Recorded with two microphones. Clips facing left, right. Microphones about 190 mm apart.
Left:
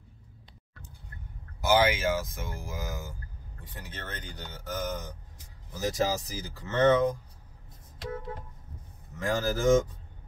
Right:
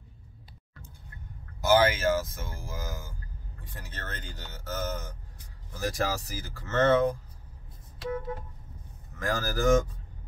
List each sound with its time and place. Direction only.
1.6 s speech: 15° left (ahead or behind)
9.2 s speech: 20° left (ahead or behind)